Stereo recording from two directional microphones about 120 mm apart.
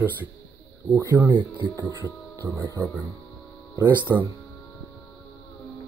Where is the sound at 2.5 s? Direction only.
35° right (ahead or behind).